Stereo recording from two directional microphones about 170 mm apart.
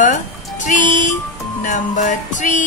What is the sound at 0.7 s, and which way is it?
Music, 45° left (ahead or behind).